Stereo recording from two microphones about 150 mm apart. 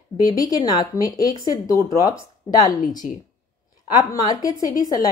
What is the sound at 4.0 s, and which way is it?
Speech, 25° left (ahead or behind).